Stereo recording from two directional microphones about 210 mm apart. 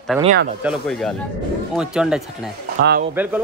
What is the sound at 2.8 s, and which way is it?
Speech, 55° right (ahead or behind).